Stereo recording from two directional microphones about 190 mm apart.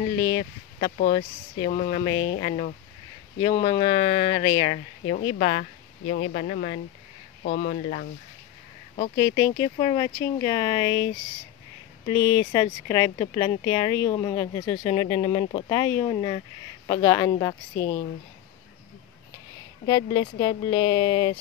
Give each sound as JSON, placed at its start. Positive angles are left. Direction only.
{"t": 0.2, "sound": "speech", "side_deg": 25}
{"t": 0.9, "sound": "speech", "side_deg": 45}
{"t": 2.0, "sound": "speech", "side_deg": 25}
{"t": 9.1, "sound": "speech", "side_deg": 20}
{"t": 12.1, "sound": "speech", "side_deg": 15}
{"t": 19.9, "sound": "speech", "side_deg": 25}